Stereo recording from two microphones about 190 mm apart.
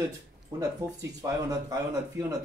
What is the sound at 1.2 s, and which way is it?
A man's voice, 15° right (ahead or behind).